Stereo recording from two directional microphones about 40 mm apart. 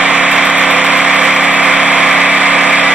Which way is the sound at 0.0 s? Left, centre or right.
Right.